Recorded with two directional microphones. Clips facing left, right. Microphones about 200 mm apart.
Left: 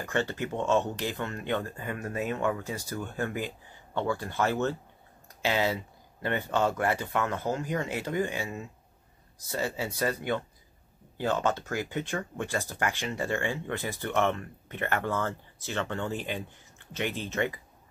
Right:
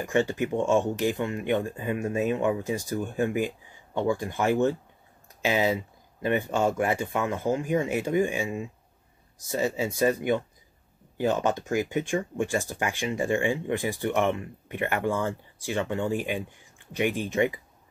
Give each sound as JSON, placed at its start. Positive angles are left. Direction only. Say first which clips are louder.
{"t": 0.0, "sound": "speech", "louder": "right 5 dB", "side_deg": -15}